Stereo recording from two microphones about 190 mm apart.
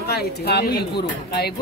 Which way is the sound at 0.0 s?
55° left (ahead or behind).